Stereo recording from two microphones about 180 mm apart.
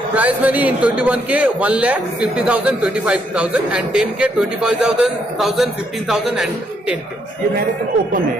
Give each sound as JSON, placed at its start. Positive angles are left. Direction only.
{"t": 0.1, "sound": "a man's voice", "side_deg": -10}